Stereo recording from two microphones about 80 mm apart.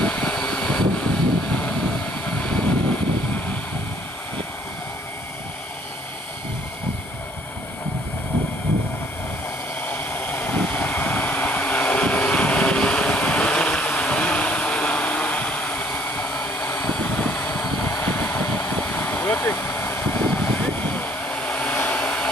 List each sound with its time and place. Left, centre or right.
0.0 s vehicle: centre
9.8 s vehicle: centre
18.0 s vehicle: left